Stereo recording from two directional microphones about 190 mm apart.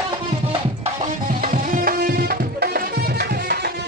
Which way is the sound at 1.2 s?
45° right (ahead or behind).